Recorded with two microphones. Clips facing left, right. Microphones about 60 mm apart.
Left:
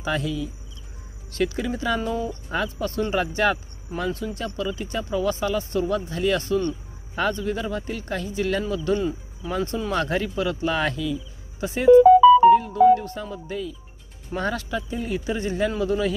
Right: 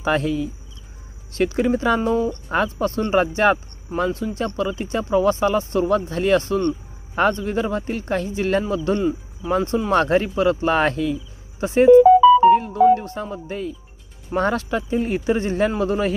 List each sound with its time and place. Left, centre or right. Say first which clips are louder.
0.0 s speech: right 6 dB; right